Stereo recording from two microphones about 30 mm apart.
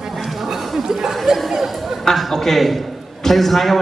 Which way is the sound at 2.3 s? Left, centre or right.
Centre.